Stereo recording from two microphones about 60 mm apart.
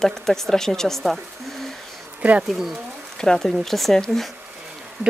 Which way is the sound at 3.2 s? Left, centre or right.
Centre.